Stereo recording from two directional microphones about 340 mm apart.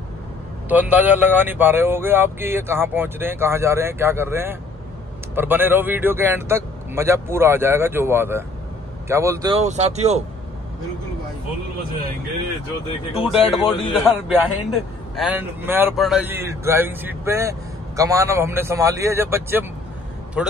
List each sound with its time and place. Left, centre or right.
0.7 s speech: centre
13.1 s speech: centre
15.1 s a man's voice: centre